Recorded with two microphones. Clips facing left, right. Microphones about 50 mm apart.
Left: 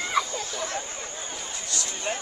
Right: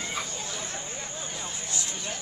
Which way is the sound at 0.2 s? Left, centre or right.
Left.